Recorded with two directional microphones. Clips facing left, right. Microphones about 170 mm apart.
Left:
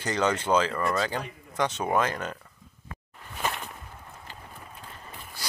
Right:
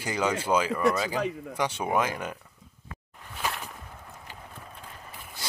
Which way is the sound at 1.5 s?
10° right (ahead or behind).